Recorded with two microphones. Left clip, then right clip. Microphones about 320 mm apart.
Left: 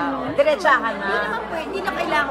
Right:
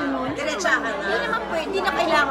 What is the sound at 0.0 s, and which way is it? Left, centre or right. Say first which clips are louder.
Chatter: left 6 dB; centre.